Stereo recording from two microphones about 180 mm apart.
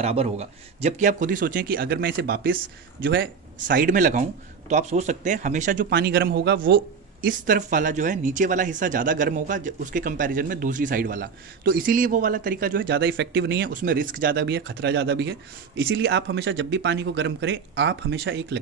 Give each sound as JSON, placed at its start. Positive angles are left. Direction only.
{"t": 0.0, "sound": "speech", "side_deg": -35}
{"t": 2.0, "sound": "speech", "side_deg": -65}
{"t": 3.6, "sound": "speech", "side_deg": -50}
{"t": 5.9, "sound": "speech", "side_deg": -65}
{"t": 12.7, "sound": "speech", "side_deg": -75}
{"t": 13.7, "sound": "speech", "side_deg": -50}